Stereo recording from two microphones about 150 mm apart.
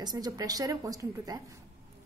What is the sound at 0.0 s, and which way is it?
A woman's voice, 25° right (ahead or behind).